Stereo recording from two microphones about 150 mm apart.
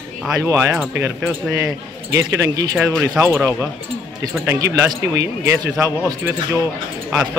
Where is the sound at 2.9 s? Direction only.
5° left (ahead or behind).